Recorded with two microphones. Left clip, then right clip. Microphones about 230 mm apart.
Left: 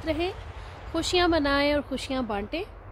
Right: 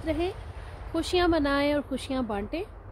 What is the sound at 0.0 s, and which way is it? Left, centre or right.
Speech, centre.